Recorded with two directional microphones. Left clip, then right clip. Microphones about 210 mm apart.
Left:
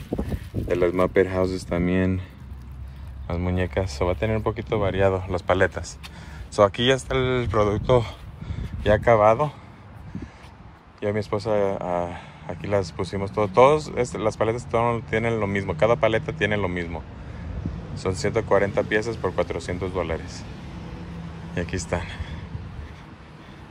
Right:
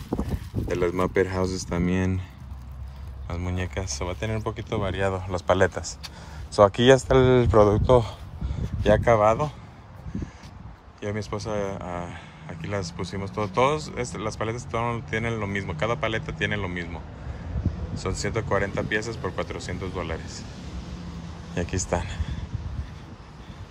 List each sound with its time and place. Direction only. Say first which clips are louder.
0.7 s speech: left 4 dB; 10° right (ahead or behind)
3.3 s speech: left 6 dB; 10° right (ahead or behind)
7.1 s speech: right 5 dB; 35° right (ahead or behind); by 9.6 s 15° right (ahead or behind)
11.0 s speech: left 6 dB; 10° right (ahead or behind)
21.5 s speech: even; 20° right (ahead or behind)